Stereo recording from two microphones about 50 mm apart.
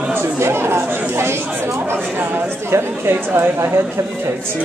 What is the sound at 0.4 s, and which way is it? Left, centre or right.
Chatter, right.